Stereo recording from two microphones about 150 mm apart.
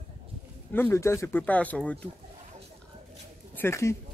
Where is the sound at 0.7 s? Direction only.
15° left (ahead or behind).